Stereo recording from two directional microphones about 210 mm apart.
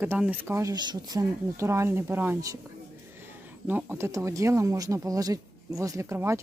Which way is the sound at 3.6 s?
10° right (ahead or behind).